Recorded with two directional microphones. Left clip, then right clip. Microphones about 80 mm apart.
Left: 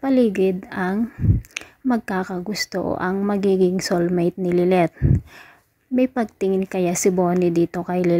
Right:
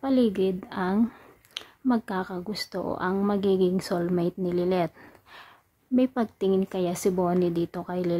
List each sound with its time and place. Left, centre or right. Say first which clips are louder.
0.0 s a woman's voice: left 6 dB; left
1.5 s a sound: left 2 dB; left
2.5 s a woman's voice: left 8 dB; left
5.9 s a woman's voice: left 5 dB; left